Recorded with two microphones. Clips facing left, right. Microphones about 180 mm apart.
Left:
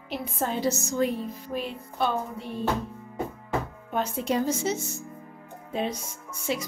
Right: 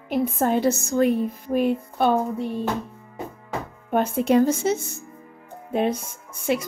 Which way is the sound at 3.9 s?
55° right (ahead or behind).